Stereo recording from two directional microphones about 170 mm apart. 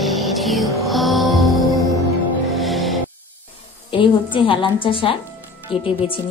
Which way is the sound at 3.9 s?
30° left (ahead or behind).